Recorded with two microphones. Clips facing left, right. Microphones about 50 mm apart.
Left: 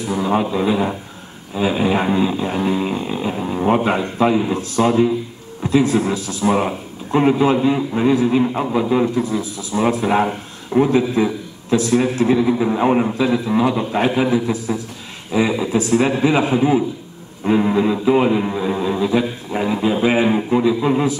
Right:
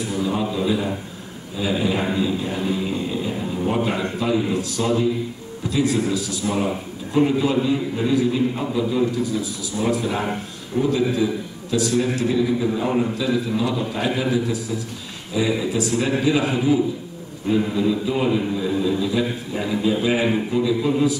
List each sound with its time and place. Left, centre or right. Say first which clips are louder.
0.1 s a man's voice: left 6 dB; left
11.0 s a man's voice: left 3 dB; left